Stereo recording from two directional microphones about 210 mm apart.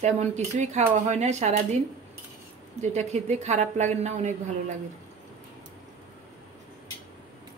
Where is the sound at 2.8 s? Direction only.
30° right (ahead or behind).